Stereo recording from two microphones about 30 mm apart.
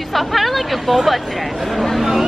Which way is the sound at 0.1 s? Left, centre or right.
Centre.